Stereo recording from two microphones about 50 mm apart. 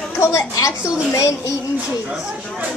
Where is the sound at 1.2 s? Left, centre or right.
Left.